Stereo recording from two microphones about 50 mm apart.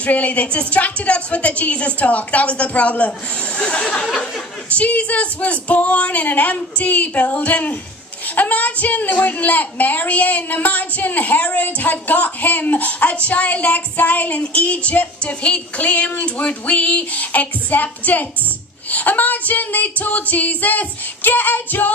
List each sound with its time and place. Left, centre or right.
0.0 s a woman's voice: left